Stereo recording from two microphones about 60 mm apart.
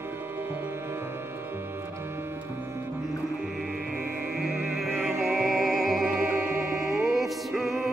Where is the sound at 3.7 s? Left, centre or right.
Right.